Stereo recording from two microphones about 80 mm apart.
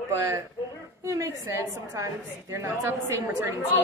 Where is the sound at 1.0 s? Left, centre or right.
Right.